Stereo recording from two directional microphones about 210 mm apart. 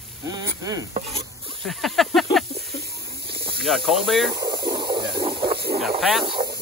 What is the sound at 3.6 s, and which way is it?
Speech, centre (ahead or behind).